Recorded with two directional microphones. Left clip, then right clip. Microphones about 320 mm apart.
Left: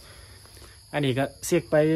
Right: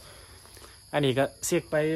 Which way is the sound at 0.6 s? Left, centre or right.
Centre.